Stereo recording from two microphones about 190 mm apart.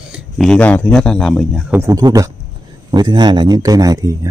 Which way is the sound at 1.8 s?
20° right (ahead or behind).